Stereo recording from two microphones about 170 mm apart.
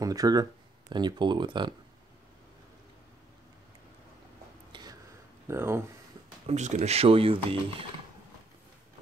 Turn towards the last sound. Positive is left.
turn(degrees=-35)  # may be behind; listen again after turning